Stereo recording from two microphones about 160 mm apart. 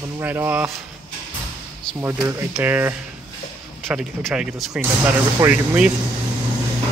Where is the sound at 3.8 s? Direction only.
Centre (ahead or behind).